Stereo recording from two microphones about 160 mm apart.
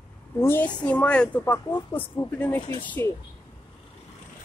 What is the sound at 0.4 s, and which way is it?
Speech, 15° left (ahead or behind).